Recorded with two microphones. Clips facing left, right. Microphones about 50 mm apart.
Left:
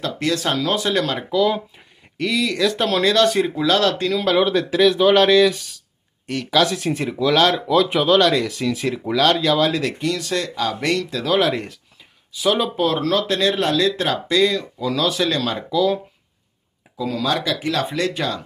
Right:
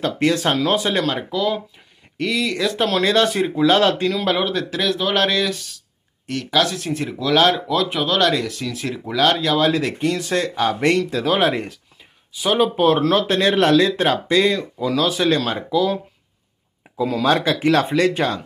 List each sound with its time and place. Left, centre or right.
0.0 s speech: right
1.3 s speech: centre
3.6 s speech: right
4.0 s speech: centre
9.9 s speech: right
12.7 s speech: right
14.9 s speech: centre
16.9 s speech: right